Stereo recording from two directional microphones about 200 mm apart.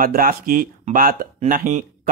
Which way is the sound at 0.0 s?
45° right (ahead or behind).